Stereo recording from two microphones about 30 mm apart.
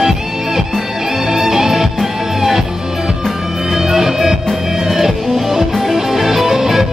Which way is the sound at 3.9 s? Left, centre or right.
Centre.